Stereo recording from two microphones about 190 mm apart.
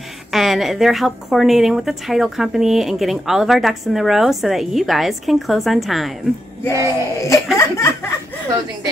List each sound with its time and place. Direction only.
0.3 s a woman's voice: centre (ahead or behind)
6.6 s music: 15° left (ahead or behind)